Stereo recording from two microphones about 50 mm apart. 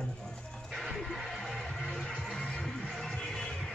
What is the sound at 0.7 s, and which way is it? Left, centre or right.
Music, centre.